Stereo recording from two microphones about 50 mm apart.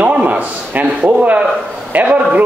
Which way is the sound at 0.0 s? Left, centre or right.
Right.